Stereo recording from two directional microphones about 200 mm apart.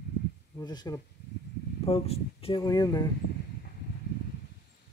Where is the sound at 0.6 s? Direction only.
20° left (ahead or behind).